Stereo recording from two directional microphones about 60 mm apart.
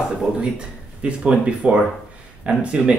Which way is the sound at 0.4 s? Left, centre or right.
Centre.